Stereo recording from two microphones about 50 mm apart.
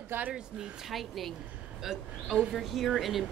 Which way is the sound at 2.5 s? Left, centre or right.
Centre.